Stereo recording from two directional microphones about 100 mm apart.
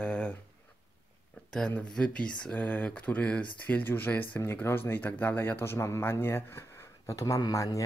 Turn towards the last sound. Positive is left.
turn(degrees=35)  # may be behind; listen again after turning